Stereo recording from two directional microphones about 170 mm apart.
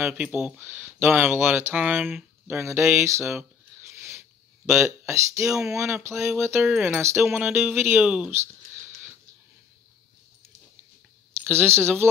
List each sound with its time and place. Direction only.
0.0 s speech: 10° right (ahead or behind)
4.6 s speech: 15° right (ahead or behind)
6.6 s speech: 5° right (ahead or behind)
7.2 s speech: 5° right (ahead or behind)
11.4 s speech: 15° right (ahead or behind)